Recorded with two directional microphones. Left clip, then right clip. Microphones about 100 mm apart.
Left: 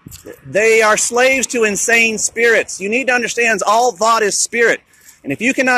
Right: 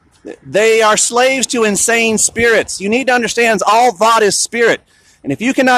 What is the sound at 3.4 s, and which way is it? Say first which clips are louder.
Speech: right 3 dB; 40° right (ahead or behind).